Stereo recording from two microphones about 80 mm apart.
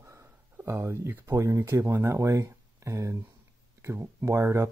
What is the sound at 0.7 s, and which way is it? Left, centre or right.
Speech, right.